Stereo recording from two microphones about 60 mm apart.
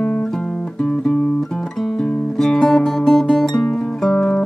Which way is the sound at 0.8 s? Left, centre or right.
Centre.